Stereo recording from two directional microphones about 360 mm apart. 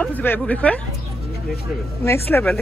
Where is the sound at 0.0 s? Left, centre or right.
Centre.